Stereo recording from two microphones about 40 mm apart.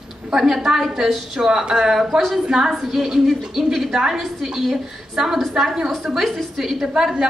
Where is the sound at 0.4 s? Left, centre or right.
Centre.